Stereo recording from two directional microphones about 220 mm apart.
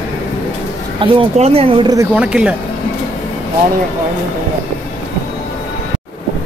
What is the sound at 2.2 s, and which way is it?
Speech, 5° right (ahead or behind).